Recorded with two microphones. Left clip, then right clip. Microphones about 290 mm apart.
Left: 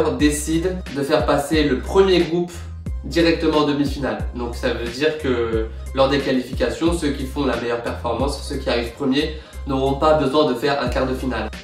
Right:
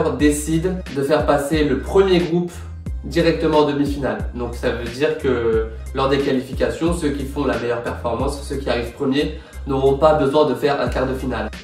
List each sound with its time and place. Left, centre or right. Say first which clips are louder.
0.2 s speech: right 1 dB; centre